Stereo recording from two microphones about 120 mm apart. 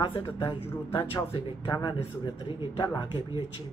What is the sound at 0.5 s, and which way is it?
Speech, 50° left (ahead or behind).